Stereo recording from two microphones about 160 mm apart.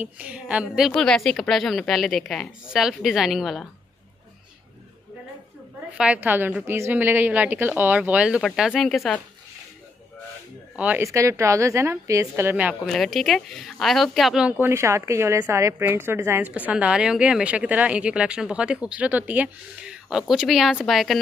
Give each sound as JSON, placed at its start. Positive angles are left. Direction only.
{"t": 0.0, "sound": "a woman's voice", "side_deg": -10}
{"t": 5.9, "sound": "a woman's voice", "side_deg": -10}
{"t": 10.8, "sound": "a woman's voice", "side_deg": -15}
{"t": 12.8, "sound": "a woman's voice", "side_deg": 0}
{"t": 14.7, "sound": "a woman's voice", "side_deg": -15}